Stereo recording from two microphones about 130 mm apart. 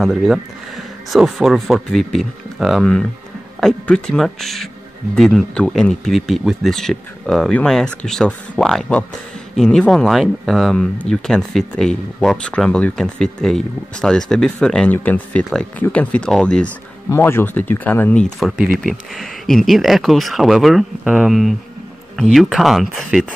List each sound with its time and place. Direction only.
0.0 s speech: centre (ahead or behind)
17.1 s speech: 20° left (ahead or behind)
18.4 s speech: centre (ahead or behind)